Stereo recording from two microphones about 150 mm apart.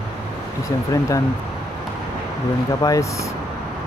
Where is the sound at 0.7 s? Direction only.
20° left (ahead or behind).